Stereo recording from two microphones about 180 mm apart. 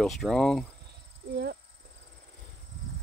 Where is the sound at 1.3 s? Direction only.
60° right (ahead or behind).